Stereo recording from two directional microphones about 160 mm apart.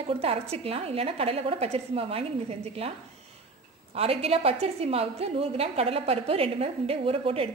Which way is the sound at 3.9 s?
40° right (ahead or behind).